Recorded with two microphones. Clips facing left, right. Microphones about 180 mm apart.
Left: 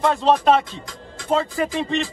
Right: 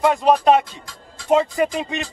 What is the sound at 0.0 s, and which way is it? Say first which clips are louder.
Speech: right 2 dB; 15° right (ahead or behind).